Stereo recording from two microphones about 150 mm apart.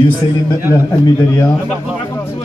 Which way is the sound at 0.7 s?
20° left (ahead or behind).